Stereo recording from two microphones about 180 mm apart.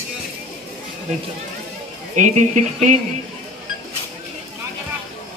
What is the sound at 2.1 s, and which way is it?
Speech, 45° right (ahead or behind).